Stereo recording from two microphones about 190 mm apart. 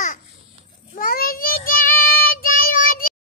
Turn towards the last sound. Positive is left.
turn(degrees=45)  # may be behind; listen again after turning